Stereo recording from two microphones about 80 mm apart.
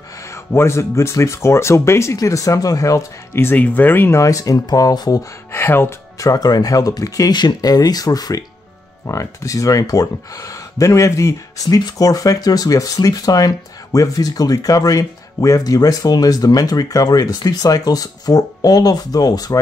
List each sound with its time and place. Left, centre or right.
0.3 s speech: left
3.3 s speech: left
4.2 s speech: left
5.5 s speech: left
6.1 s speech: left
9.0 s speech: left